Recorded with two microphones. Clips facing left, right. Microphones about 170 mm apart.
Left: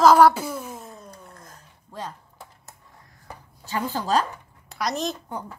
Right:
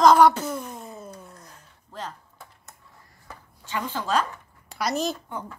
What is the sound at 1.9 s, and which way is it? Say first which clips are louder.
Speech: left 1 dB; 10° left (ahead or behind).